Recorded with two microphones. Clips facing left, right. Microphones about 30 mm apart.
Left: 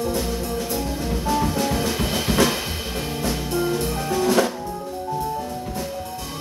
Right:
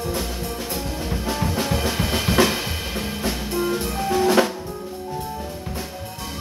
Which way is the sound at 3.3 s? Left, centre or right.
Centre.